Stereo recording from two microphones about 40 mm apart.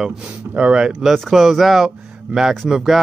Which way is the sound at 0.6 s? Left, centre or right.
Right.